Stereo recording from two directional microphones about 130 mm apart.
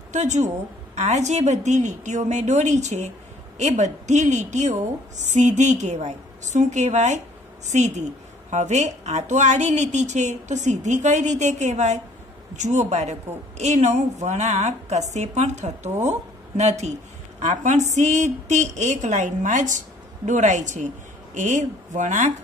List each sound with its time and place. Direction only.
0.1 s a woman's voice: 65° right (ahead or behind)